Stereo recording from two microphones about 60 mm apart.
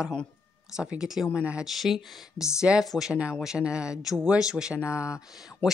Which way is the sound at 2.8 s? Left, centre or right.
Centre.